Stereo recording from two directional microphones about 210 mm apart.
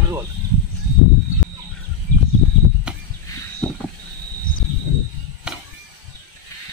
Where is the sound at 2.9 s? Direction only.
5° right (ahead or behind).